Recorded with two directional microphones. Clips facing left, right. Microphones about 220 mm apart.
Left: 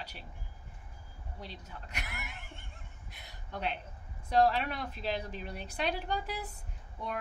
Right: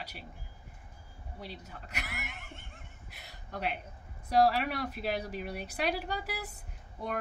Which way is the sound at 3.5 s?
5° right (ahead or behind).